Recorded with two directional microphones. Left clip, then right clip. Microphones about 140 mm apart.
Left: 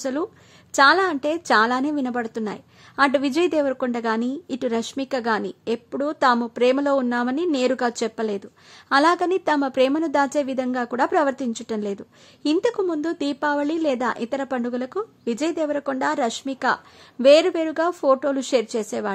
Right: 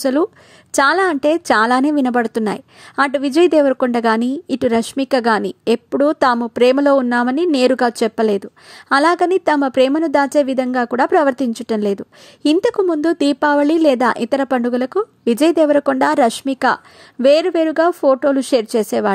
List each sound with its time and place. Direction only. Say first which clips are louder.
0.0 s speech: right 10 dB; 45° right (ahead or behind)
3.1 s a woman's voice: right 7 dB; 35° right (ahead or behind)